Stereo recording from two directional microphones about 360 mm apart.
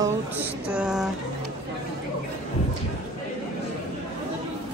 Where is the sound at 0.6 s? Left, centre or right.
Centre.